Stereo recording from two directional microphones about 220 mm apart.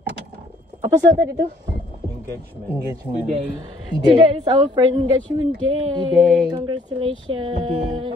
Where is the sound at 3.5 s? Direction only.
20° right (ahead or behind).